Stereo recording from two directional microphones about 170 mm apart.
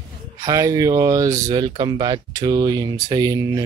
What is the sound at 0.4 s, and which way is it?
Speech, 20° right (ahead or behind).